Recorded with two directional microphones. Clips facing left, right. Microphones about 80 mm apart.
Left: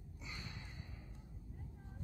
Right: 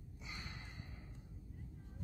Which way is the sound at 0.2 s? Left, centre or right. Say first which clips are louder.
Even; right.